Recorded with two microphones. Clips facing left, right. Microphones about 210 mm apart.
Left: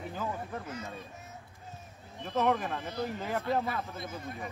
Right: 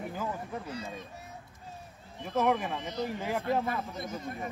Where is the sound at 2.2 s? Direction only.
10° right (ahead or behind).